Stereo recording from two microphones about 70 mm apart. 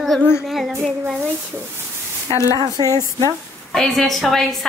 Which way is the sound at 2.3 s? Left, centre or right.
Right.